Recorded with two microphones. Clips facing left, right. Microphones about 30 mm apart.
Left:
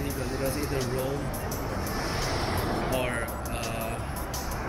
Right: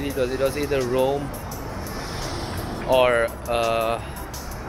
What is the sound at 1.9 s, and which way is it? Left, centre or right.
Vehicle, centre.